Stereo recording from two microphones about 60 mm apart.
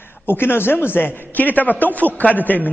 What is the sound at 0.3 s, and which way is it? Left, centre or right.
A man's voice, left.